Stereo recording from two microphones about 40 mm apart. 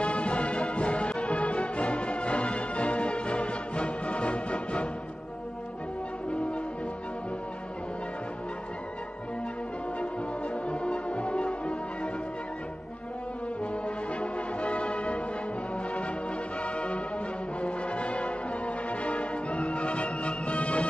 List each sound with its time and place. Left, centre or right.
0.0 s music: left
10.5 s music: left
13.8 s music: left
16.6 s music: left
17.6 s brass instrument: left
18.9 s music: left